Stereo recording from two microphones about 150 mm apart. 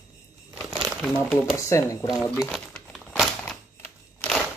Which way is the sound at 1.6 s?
20° left (ahead or behind).